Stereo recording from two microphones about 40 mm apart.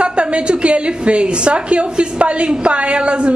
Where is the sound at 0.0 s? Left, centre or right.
Right.